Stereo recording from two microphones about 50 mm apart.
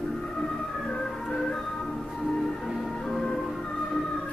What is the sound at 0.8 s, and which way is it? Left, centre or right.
Music, centre.